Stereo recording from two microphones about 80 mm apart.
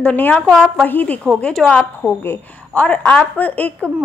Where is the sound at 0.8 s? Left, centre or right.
Left.